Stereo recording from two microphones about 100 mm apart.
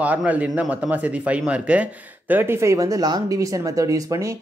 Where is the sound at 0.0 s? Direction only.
15° right (ahead or behind).